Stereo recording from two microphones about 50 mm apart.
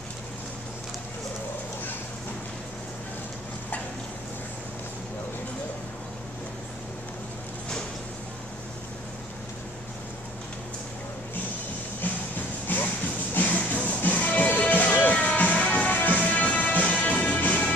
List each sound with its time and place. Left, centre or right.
12.7 s music: left